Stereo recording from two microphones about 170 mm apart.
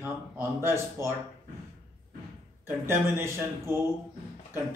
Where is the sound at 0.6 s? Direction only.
15° right (ahead or behind).